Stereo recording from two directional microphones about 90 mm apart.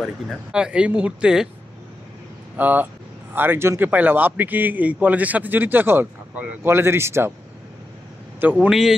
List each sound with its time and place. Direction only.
0.5 s speech: 10° right (ahead or behind)
2.5 s speech: 20° right (ahead or behind)
8.5 s speech: 5° right (ahead or behind)